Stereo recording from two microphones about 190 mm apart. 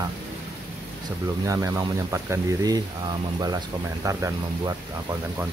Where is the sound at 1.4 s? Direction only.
20° right (ahead or behind).